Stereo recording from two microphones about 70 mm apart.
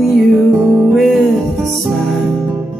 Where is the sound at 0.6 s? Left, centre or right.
Right.